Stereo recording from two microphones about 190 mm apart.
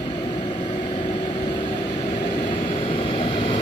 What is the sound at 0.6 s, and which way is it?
Vehicle, 40° left (ahead or behind).